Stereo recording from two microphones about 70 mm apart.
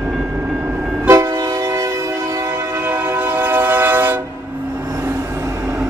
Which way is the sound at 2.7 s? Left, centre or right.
Right.